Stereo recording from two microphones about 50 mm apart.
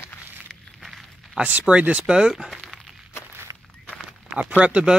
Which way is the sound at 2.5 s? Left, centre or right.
Centre.